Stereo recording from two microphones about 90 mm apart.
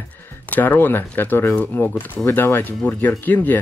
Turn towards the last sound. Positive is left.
turn(degrees=20)  # may be behind; listen again after turning